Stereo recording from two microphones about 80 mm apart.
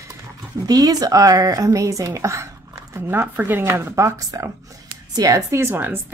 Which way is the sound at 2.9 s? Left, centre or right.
Right.